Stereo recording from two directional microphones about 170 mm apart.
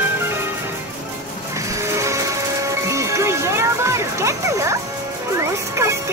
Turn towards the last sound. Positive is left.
turn(degrees=-15)  # may be behind; listen again after turning